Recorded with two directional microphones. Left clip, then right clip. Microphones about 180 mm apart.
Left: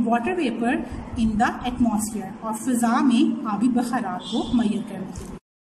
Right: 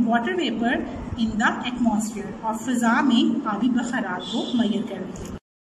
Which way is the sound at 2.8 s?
35° left (ahead or behind).